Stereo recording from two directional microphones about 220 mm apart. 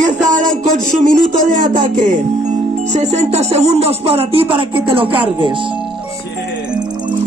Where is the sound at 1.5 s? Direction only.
35° right (ahead or behind).